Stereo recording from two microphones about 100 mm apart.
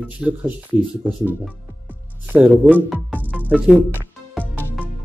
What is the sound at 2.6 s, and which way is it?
Speech, 5° right (ahead or behind).